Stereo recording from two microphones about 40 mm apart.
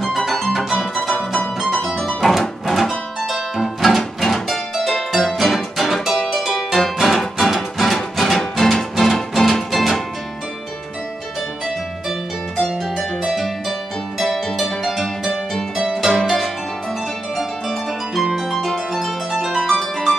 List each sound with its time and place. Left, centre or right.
0.2 s music: centre
2.6 s music: centre
13.3 s harp: centre
14.2 s music: centre
17.4 s harp: centre